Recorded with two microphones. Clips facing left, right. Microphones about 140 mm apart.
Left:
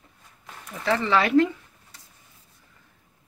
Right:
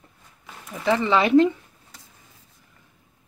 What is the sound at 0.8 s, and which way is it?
Speech, 15° right (ahead or behind).